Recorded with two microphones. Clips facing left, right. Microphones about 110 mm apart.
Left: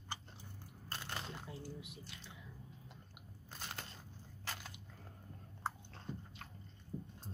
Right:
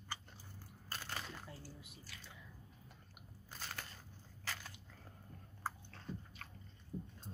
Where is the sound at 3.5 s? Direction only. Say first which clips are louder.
Left 1 dB; 20° left (ahead or behind).